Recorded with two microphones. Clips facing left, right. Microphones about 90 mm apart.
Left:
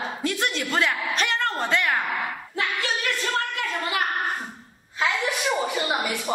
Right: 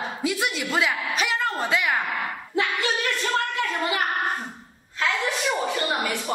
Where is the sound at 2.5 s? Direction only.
20° right (ahead or behind).